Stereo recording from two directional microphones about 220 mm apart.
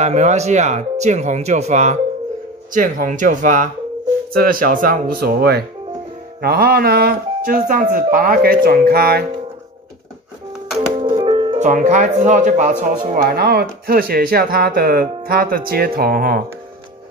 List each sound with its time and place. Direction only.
0.0 s speech: 30° right (ahead or behind)
11.0 s speech: 20° right (ahead or behind); by 16.3 s 40° right (ahead or behind)